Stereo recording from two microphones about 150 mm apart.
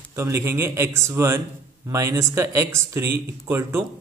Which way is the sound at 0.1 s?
20° right (ahead or behind).